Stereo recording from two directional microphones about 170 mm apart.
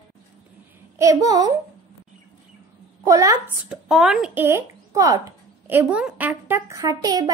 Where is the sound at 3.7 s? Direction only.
Centre (ahead or behind); by 7.3 s 20° right (ahead or behind).